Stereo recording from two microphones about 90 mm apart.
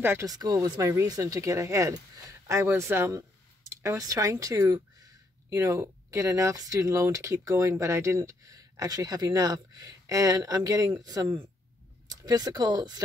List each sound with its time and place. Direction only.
0.2 s speech: 45° right (ahead or behind)
5.5 s speech: 35° right (ahead or behind)